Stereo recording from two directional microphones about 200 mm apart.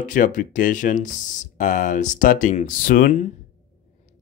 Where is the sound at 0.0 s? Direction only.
40° left (ahead or behind).